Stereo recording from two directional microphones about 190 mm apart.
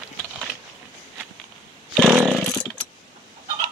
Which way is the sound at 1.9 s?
5° right (ahead or behind).